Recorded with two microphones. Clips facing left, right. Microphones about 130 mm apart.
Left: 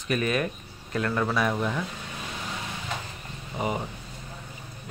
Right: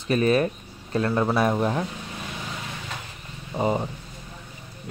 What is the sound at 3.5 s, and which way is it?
Speech, 30° right (ahead or behind).